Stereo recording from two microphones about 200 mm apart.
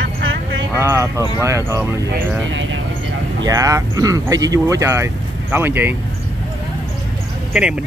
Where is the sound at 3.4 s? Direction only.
15° right (ahead or behind).